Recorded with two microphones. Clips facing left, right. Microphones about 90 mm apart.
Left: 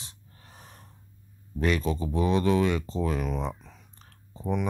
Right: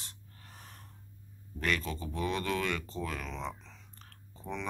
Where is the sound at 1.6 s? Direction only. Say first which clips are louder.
Left 7 dB; 20° left (ahead or behind).